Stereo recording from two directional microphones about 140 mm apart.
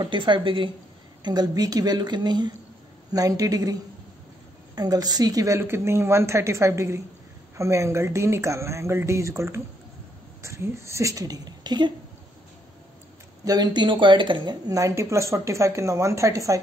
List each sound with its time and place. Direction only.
0.0 s a woman's voice: 35° right (ahead or behind)
4.7 s speech: 25° right (ahead or behind)
13.5 s speech: 30° right (ahead or behind)